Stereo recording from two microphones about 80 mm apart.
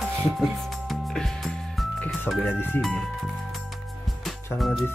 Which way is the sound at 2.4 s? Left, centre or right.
Left.